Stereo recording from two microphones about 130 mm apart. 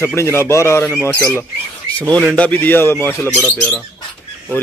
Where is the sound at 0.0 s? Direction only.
20° left (ahead or behind).